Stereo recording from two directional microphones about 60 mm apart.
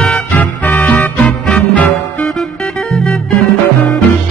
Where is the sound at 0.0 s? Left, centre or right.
Left.